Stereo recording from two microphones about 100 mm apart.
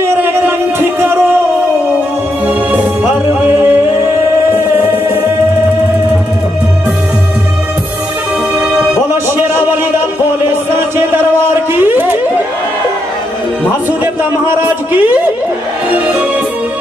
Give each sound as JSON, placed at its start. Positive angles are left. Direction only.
{"t": 0.0, "sound": "music", "side_deg": -25}
{"t": 3.4, "sound": "music", "side_deg": -20}
{"t": 4.8, "sound": "music", "side_deg": -20}
{"t": 9.1, "sound": "a sound", "side_deg": -20}
{"t": 11.7, "sound": "music", "side_deg": -20}
{"t": 14.5, "sound": "speech", "side_deg": -20}